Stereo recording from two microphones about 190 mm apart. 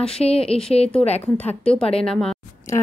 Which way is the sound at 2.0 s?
5° left (ahead or behind).